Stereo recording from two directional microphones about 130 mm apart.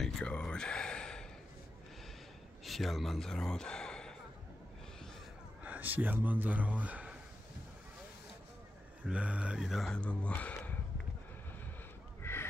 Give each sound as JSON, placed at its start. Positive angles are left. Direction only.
{"t": 0.0, "sound": "a sound", "side_deg": 5}
{"t": 2.6, "sound": "speech", "side_deg": 0}
{"t": 5.6, "sound": "speech", "side_deg": -15}
{"t": 9.0, "sound": "speech", "side_deg": -10}
{"t": 12.2, "sound": "duck", "side_deg": 20}